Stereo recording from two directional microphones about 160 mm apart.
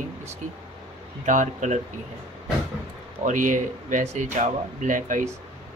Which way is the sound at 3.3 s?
50° right (ahead or behind).